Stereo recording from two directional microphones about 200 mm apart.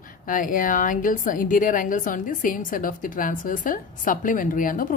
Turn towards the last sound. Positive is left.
turn(degrees=45)  # may be behind; listen again after turning